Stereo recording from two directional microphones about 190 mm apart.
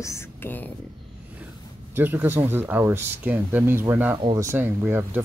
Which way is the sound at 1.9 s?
10° right (ahead or behind).